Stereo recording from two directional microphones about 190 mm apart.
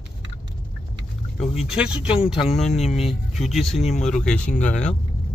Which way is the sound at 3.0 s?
Centre (ahead or behind).